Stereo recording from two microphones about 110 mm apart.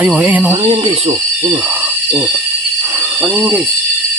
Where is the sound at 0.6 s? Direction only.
55° right (ahead or behind).